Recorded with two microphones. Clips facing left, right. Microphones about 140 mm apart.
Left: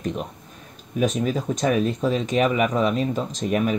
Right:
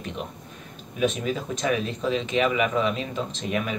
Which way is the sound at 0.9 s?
40° left (ahead or behind).